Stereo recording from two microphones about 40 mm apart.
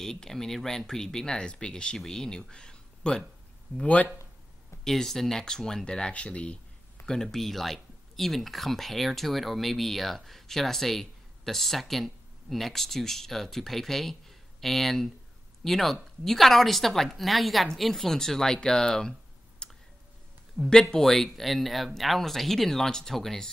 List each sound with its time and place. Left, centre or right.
0.0 s speech: centre
2.5 s a sound: left
3.8 s speech: left
4.8 s speech: centre; by 6.6 s left
7.1 s speech: centre
19.6 s clicking: left
20.6 s speech: centre
21.0 s speech: centre